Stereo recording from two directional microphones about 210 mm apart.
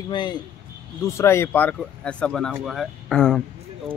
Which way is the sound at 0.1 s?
20° left (ahead or behind).